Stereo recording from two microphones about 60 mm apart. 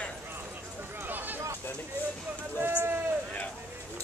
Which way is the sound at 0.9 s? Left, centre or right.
Right.